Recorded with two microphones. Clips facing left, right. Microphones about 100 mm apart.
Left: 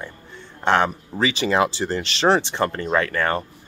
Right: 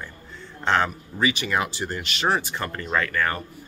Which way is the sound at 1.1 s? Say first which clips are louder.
Left 4 dB; 30° left (ahead or behind).